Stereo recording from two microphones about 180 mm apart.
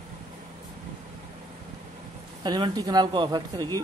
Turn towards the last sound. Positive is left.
turn(degrees=-25)  # may be behind; listen again after turning